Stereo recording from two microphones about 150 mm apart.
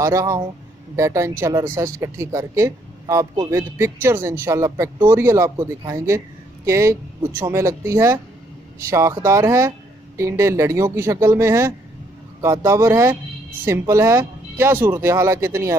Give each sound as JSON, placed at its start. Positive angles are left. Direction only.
{"t": 0.0, "sound": "a man's voice", "side_deg": -20}